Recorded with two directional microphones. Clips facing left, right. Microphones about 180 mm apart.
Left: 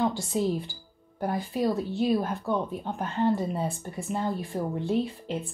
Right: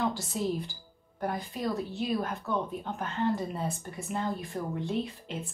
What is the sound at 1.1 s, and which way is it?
Speech, 30° left (ahead or behind).